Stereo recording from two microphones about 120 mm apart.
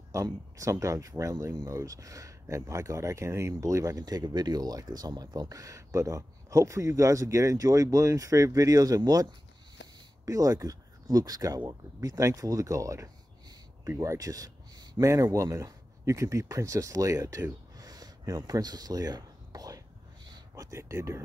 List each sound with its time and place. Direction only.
0.1 s speech: 25° right (ahead or behind)